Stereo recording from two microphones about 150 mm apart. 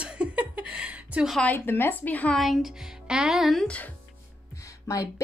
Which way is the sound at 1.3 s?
10° left (ahead or behind).